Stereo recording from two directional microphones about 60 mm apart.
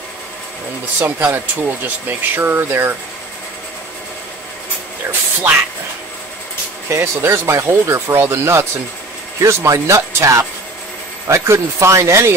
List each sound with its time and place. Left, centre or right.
0.9 s speech: right
5.0 s speech: right
6.9 s speech: right
9.4 s a man's voice: right